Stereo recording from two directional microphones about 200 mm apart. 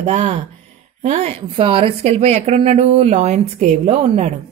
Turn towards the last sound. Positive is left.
turn(degrees=-35)  # may be behind; listen again after turning